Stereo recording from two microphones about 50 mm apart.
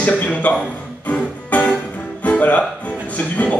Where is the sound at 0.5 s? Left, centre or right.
Left.